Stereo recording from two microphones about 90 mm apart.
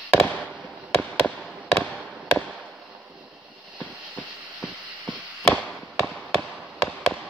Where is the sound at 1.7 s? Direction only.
15° left (ahead or behind).